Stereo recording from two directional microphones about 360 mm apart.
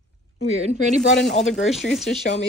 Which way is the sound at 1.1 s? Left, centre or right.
Centre.